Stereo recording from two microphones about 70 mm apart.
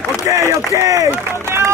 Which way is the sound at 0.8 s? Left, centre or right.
Right.